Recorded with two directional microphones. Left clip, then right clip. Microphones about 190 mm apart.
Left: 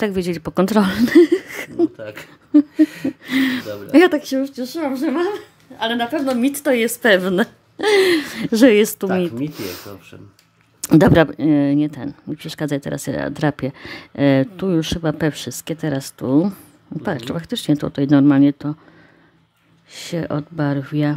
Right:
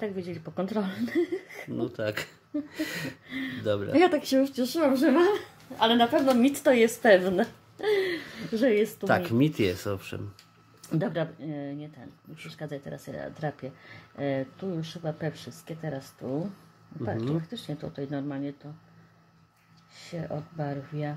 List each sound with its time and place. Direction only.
0.0 s speech: 50° left (ahead or behind)
2.0 s a sound: 30° right (ahead or behind)
3.3 s speech: 50° left (ahead or behind)
3.6 s a sound: 35° right (ahead or behind)
3.9 s speech: 30° left (ahead or behind)
4.2 s speech: 15° left (ahead or behind); by 8.8 s 50° left (ahead or behind)
9.4 s speech: 45° right (ahead or behind)
10.8 s speech: 50° left (ahead or behind)
19.9 s speech: 50° left (ahead or behind)